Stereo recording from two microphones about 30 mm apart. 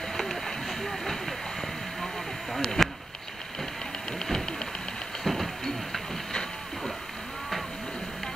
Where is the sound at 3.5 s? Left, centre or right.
Centre.